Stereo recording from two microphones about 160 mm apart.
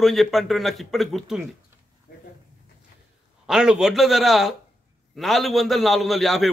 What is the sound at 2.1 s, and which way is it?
Dog, 60° left (ahead or behind).